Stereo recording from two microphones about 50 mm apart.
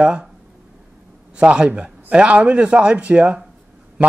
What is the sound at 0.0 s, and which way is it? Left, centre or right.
Speech, centre.